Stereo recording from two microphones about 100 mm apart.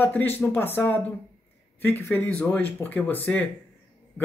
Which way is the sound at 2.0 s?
25° left (ahead or behind).